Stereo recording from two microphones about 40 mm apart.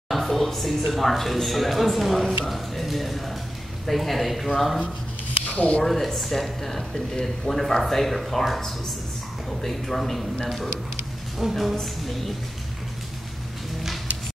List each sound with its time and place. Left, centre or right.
0.1 s speech: centre
5.5 s speech: left
5.9 s speech: centre
11.3 s speech: centre